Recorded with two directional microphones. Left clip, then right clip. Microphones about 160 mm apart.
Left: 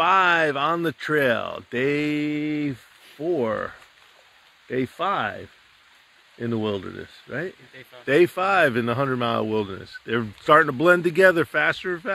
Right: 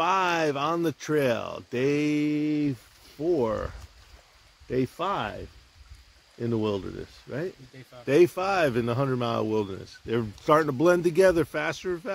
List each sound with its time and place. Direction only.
0.0 s speech: 10° right (ahead or behind)
6.4 s speech: 20° right (ahead or behind)